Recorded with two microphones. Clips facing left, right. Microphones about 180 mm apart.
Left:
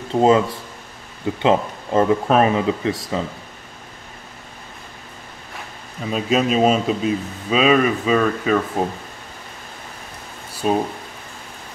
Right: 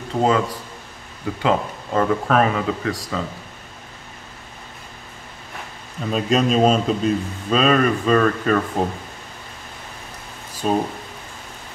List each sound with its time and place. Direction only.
0.1 s speech: 25° left (ahead or behind)
6.0 s speech: 5° left (ahead or behind)
10.6 s speech: 5° left (ahead or behind)